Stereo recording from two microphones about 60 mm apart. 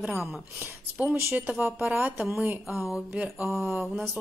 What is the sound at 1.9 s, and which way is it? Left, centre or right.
Speech, right.